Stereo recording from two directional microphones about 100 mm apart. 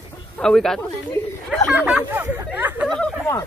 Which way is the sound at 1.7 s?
10° right (ahead or behind).